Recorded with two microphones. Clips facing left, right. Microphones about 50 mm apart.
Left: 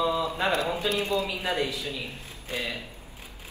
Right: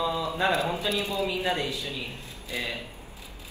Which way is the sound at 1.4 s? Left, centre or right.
Right.